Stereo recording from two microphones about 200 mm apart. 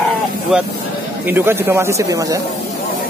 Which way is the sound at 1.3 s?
10° right (ahead or behind).